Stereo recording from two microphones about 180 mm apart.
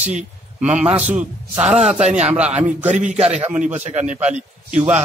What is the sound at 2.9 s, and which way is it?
A man's voice, 40° right (ahead or behind).